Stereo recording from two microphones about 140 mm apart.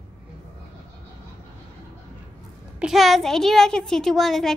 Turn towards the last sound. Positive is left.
turn(degrees=0)  # may be behind; listen again after turning